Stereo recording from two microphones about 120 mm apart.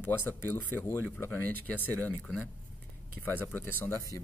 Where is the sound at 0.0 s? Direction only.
15° left (ahead or behind).